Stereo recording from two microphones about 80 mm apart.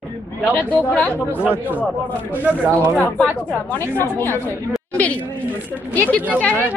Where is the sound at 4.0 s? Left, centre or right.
Left.